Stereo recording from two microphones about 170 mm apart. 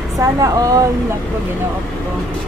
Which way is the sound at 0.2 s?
20° right (ahead or behind).